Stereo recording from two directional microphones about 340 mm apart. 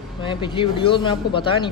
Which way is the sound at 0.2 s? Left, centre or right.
Centre.